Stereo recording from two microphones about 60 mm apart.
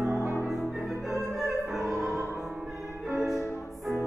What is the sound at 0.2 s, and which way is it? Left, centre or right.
Music, right.